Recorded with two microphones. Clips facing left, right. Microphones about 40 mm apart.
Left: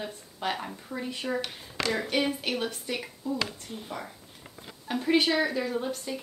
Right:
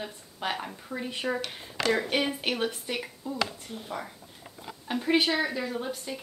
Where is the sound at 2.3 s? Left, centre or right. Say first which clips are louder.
Right 1 dB; right.